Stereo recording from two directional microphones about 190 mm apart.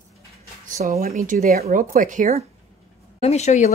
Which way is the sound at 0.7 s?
45° right (ahead or behind).